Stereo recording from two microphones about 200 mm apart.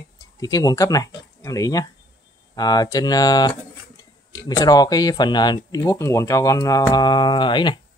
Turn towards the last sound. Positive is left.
turn(degrees=25)  # may be behind; listen again after turning